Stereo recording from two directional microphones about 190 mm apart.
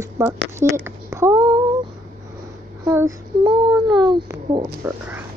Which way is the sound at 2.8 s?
15° right (ahead or behind).